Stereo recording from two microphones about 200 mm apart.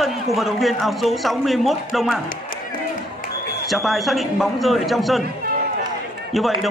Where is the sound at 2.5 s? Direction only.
45° left (ahead or behind).